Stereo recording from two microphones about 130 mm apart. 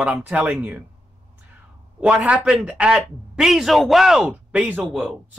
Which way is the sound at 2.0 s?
10° right (ahead or behind).